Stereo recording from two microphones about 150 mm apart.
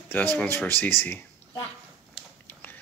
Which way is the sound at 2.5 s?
15° left (ahead or behind).